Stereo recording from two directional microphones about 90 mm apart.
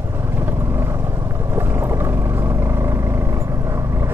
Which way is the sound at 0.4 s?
25° right (ahead or behind).